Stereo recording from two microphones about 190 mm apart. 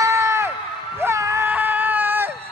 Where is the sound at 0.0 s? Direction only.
15° right (ahead or behind).